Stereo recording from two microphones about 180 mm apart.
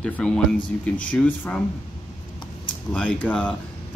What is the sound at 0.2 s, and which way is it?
Speech, 5° left (ahead or behind).